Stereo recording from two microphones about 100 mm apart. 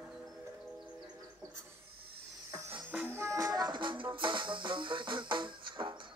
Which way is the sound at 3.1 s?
30° right (ahead or behind).